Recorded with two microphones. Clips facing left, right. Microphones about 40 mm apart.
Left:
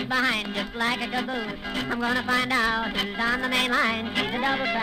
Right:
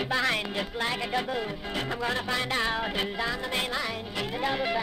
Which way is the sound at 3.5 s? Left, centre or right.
Left.